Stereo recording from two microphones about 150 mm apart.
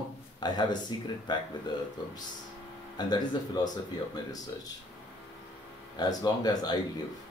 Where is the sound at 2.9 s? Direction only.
30° left (ahead or behind).